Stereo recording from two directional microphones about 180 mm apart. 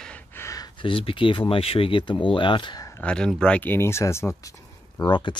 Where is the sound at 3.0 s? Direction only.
5° left (ahead or behind).